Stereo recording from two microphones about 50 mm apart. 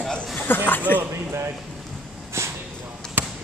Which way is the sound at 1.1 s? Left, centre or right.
Right.